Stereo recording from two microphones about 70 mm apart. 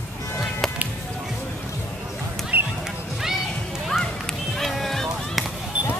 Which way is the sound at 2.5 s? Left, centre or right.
Right.